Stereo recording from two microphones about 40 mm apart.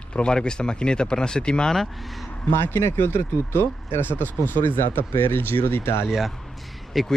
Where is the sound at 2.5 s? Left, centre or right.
Left.